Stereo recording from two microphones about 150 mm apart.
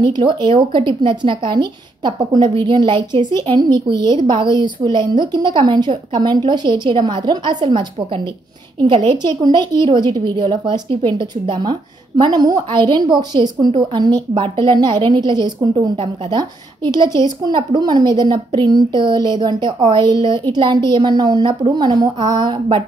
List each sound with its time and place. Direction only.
0.0 s a woman's voice: 30° right (ahead or behind)